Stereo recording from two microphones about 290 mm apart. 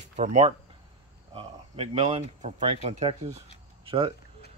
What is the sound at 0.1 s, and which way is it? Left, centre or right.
Speech, right.